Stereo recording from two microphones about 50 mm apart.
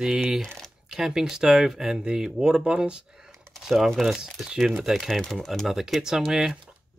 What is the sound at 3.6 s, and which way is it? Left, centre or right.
Speech, centre.